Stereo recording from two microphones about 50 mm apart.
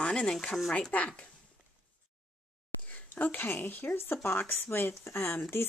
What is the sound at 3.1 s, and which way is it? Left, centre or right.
Speech, left.